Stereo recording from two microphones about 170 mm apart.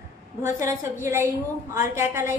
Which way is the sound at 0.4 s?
15° right (ahead or behind).